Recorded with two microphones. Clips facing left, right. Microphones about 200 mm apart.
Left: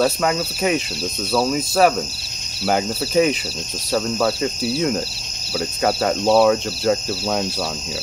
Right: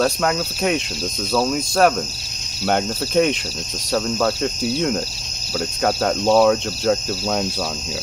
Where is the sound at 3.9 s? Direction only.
10° left (ahead or behind).